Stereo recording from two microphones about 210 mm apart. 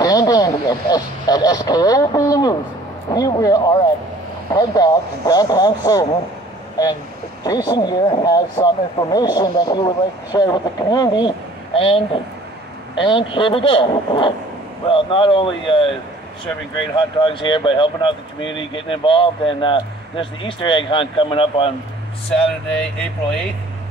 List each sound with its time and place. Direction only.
0.0 s speech: 20° left (ahead or behind)
7.4 s speech: 20° left (ahead or behind)
16.9 s speech: 20° left (ahead or behind)
22.3 s speech: 5° left (ahead or behind)